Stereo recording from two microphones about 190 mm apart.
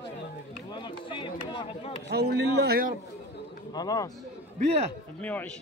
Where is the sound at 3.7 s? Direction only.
20° left (ahead or behind).